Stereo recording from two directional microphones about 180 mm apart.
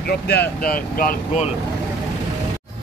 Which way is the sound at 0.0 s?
60° left (ahead or behind).